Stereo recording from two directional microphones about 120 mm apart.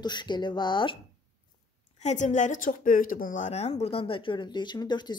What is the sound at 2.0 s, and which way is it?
Speech, 85° left.